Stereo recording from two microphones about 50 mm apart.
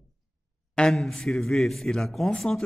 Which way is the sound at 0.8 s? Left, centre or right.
Centre.